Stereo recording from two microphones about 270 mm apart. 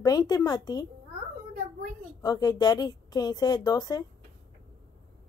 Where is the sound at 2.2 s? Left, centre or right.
Centre.